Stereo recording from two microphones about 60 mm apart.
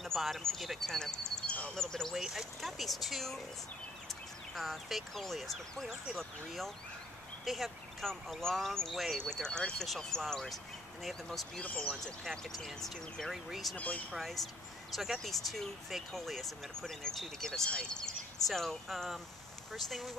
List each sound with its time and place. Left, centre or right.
0.0 s speech: centre
2.1 s speech: centre
4.6 s speech: centre
13.7 s speech: left
14.1 s speech: centre